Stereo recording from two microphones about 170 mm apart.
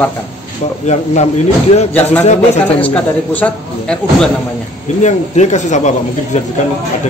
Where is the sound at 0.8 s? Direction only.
40° left (ahead or behind).